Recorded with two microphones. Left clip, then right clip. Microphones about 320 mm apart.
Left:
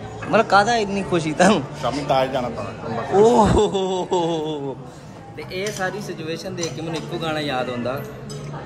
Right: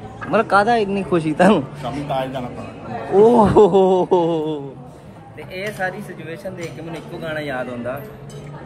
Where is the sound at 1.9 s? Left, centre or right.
Left.